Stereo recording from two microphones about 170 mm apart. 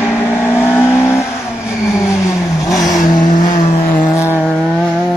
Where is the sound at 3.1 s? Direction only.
50° left (ahead or behind).